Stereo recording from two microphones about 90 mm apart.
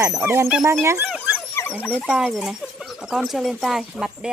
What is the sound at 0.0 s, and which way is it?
Speech, 35° right (ahead or behind).